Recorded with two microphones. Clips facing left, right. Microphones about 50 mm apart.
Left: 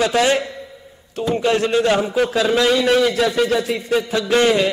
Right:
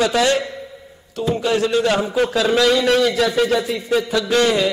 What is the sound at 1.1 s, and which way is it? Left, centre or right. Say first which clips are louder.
Speech: left 1 dB; left.